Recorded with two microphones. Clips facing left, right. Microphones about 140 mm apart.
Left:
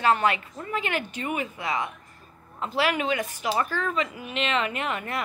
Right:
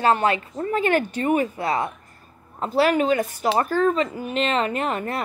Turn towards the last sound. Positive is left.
turn(degrees=-35)  # may be behind; listen again after turning